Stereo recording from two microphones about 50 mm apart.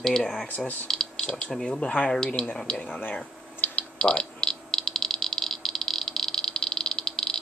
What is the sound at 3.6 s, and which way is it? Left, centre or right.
Rattle, left.